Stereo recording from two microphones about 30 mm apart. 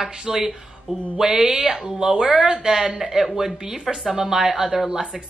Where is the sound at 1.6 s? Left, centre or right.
Centre.